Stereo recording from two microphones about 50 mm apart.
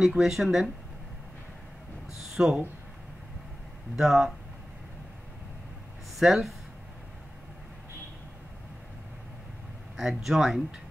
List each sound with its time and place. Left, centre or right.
0.0 s speech: centre
2.4 s speech: centre
3.9 s speech: centre
6.1 s speech: centre
9.9 s speech: centre